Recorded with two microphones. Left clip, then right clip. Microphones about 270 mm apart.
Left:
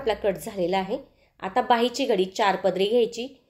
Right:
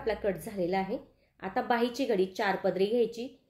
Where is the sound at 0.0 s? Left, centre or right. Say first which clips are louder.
Left 6 dB; left.